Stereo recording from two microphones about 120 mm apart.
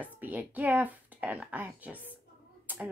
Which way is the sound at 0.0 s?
15° right (ahead or behind).